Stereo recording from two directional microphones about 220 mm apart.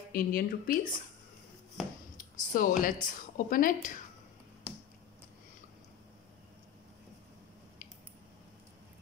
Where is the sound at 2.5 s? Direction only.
40° left (ahead or behind).